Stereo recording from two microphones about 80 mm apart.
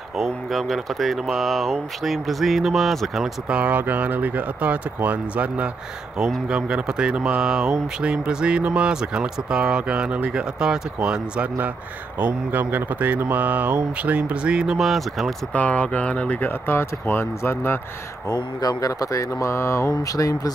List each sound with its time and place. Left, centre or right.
0.2 s speech: centre
3.4 s speech: centre
12.2 s speech: right; by 15.3 s centre
15.5 s speech: centre
18.6 s speech: left
19.4 s mantra: left
19.9 s speech: left